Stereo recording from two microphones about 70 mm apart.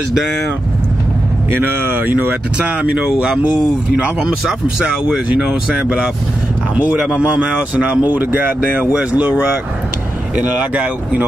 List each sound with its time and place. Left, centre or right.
1.5 s speech: right; by 5.9 s centre
7.2 s speech: centre